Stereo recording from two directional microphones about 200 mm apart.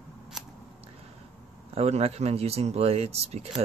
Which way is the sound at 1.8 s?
30° right (ahead or behind).